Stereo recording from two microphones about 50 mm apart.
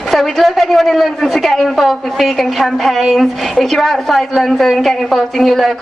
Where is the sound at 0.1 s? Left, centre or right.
Centre.